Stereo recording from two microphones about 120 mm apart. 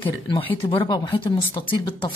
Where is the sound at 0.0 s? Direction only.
50° left (ahead or behind).